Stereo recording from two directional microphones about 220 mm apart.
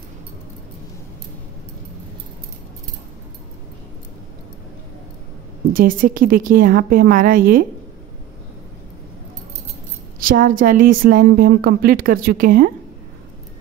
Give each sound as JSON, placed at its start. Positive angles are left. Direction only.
{"t": 5.7, "sound": "a woman's voice", "side_deg": -40}
{"t": 10.2, "sound": "a woman's voice", "side_deg": -40}